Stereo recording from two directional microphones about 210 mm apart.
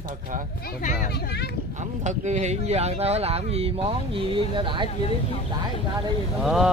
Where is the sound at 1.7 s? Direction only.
35° right (ahead or behind).